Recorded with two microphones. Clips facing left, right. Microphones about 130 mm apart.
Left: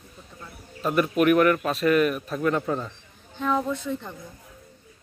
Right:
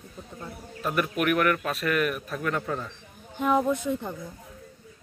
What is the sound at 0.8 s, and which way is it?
A man's voice, 30° left (ahead or behind).